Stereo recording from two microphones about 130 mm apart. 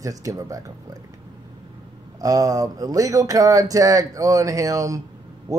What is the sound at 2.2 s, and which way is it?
Speech, 25° right (ahead or behind).